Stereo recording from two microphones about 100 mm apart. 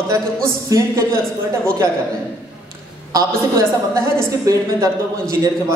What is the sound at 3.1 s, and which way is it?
A man's voice, 30° right (ahead or behind).